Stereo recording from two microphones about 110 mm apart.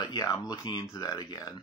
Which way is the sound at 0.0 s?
35° left (ahead or behind).